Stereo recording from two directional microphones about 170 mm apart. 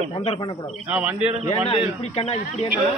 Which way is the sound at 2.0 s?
40° left (ahead or behind).